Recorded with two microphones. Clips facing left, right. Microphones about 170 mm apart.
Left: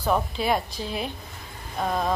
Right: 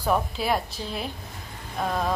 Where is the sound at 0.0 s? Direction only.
5° right (ahead or behind).